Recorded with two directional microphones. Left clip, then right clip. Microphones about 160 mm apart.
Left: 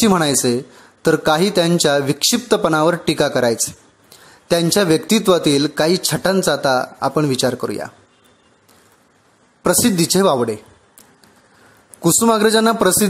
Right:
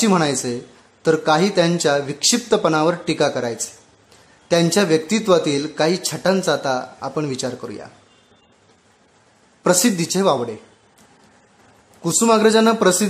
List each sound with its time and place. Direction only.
0.0 s a man's voice: 35° left (ahead or behind)
9.6 s a man's voice: 35° left (ahead or behind)
12.0 s a man's voice: 40° left (ahead or behind)